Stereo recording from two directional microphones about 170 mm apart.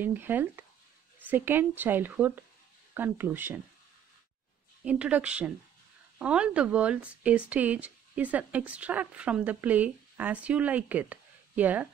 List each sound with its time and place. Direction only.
0.0 s speech: 10° right (ahead or behind)
4.8 s speech: 5° right (ahead or behind)